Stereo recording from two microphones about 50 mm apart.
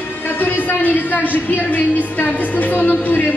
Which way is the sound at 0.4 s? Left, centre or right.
Left.